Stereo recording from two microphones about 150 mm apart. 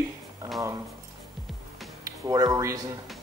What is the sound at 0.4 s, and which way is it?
Music, 20° right (ahead or behind).